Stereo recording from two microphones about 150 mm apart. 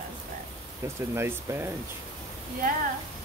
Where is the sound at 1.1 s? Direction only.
15° right (ahead or behind).